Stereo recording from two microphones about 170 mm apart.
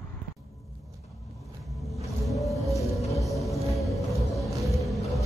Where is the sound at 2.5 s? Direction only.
20° left (ahead or behind).